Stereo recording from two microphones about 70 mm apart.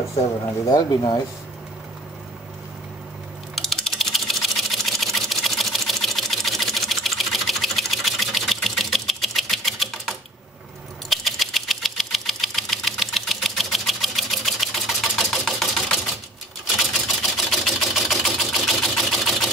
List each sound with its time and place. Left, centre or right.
0.7 s speech: left
3.5 s sewing machine: centre